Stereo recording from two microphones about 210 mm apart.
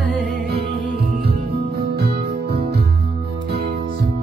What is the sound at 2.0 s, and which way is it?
Music, 50° right (ahead or behind).